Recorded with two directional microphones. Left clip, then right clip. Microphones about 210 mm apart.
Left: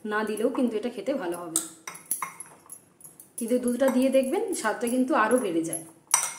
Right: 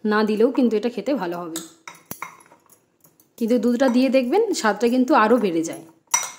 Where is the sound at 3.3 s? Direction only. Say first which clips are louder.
Right 6 dB; 45° right (ahead or behind).